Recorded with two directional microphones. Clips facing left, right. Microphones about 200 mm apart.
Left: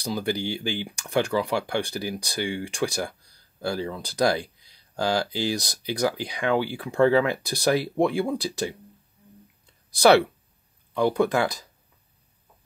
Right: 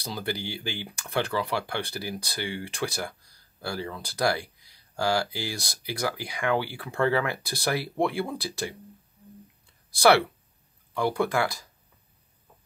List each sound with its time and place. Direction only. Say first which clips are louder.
0.0 s speech: left 5 dB; 15° left (ahead or behind)
9.9 s speech: left 3 dB; 20° left (ahead or behind)